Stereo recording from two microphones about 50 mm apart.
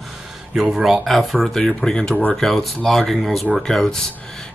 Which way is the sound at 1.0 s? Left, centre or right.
Centre.